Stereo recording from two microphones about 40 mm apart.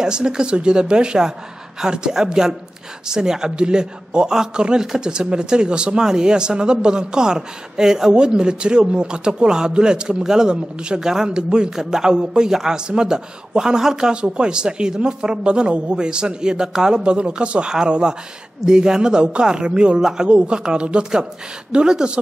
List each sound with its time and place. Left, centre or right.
0.0 s a man's voice: centre
14.1 s a man's voice: right
20.0 s speech: centre
20.2 s a man's voice: right